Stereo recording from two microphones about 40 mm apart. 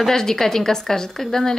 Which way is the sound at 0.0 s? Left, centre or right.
Centre.